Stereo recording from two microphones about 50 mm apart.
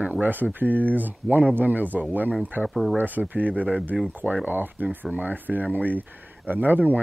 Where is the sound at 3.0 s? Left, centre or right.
Right.